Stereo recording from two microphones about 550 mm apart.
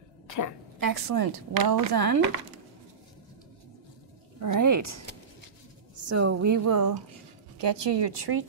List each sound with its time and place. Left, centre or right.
0.7 s speech: right
4.4 s speech: right
6.0 s speech: right
7.6 s a woman's voice: right